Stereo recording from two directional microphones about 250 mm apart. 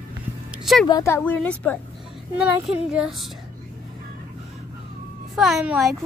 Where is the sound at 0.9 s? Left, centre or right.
Centre.